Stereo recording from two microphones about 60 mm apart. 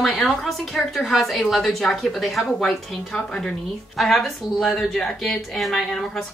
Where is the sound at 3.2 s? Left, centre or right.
Centre.